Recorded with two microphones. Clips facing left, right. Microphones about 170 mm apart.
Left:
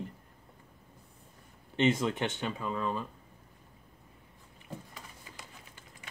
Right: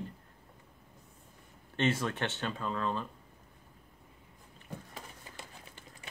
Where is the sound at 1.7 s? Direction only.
15° left (ahead or behind).